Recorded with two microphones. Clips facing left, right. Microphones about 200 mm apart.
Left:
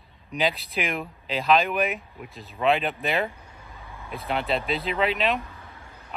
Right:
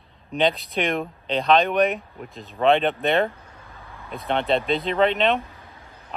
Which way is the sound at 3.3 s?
15° left (ahead or behind).